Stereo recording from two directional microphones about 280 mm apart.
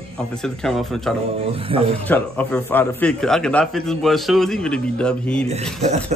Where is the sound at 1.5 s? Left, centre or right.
Centre.